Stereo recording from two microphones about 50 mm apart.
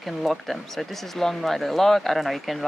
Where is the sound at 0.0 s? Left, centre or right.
Centre.